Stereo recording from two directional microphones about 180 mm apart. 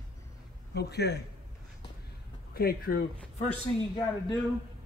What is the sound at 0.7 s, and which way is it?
Speech, 65° left (ahead or behind).